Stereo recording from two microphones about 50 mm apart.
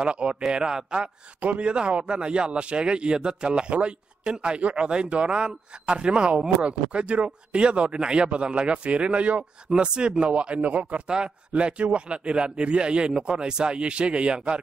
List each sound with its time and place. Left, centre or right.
0.0 s a man's voice: centre
1.4 s a man's voice: right